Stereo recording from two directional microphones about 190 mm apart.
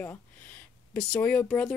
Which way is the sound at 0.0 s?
10° left (ahead or behind).